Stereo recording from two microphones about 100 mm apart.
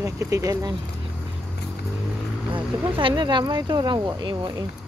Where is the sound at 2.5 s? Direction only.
55° right (ahead or behind).